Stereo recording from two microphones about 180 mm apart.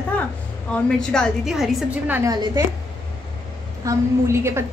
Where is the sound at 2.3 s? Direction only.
25° right (ahead or behind).